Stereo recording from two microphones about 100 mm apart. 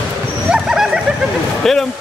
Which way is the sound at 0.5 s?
5° right (ahead or behind).